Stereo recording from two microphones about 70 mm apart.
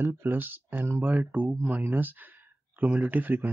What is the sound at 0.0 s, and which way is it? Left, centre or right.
Speech, right.